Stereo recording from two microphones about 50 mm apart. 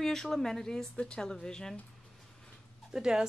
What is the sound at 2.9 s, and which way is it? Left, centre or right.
Speech, centre.